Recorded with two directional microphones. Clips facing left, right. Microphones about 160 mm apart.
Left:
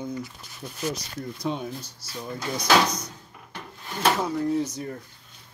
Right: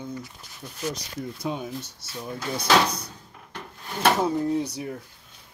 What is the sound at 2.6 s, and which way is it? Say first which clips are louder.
Speech: even; 30° right (ahead or behind).